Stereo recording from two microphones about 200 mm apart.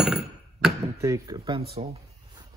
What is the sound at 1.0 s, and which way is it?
Speech, 20° right (ahead or behind).